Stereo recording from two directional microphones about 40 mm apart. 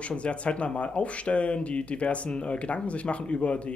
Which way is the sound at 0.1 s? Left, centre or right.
Left.